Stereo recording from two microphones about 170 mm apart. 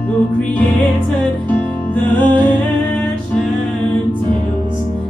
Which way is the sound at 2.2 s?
25° right (ahead or behind).